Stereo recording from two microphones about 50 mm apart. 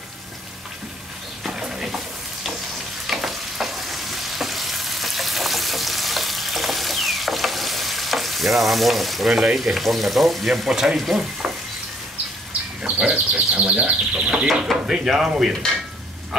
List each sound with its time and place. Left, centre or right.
1.4 s a sound: centre
3.1 s stir: centre
11.0 s speech: centre
13.0 s speech: right
14.7 s speech: centre